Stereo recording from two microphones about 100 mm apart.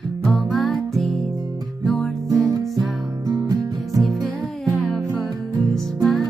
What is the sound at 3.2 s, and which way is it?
Music, 40° right (ahead or behind).